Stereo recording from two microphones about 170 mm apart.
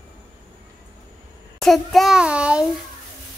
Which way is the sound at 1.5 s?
Centre (ahead or behind).